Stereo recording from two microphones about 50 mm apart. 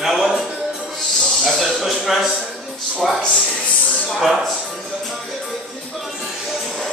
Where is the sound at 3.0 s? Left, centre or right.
Centre.